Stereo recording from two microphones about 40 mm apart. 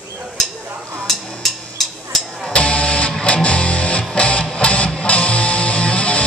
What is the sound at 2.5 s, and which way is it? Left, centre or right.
Music, left.